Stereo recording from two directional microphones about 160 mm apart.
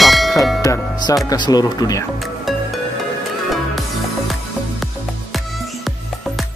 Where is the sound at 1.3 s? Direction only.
25° left (ahead or behind).